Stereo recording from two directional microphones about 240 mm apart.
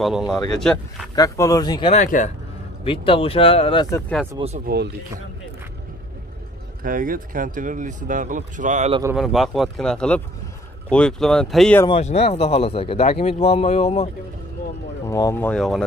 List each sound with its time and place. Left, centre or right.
0.0 s speech: centre
1.1 s speech: centre
3.9 s speech: centre
4.7 s speech: right
6.8 s speech: right
9.1 s speech: centre
11.8 s speech: left
15.0 s speech: centre